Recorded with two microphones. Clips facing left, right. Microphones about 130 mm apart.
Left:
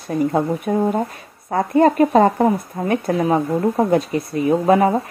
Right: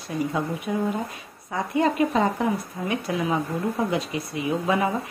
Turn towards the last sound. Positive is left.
turn(degrees=45)  # may be behind; listen again after turning